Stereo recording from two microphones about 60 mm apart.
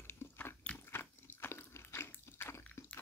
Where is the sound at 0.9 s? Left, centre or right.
Left.